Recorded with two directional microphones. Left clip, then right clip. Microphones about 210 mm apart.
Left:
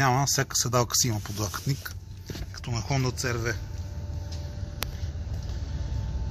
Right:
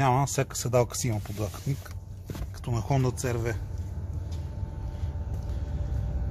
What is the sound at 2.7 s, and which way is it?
Speech, 20° right (ahead or behind).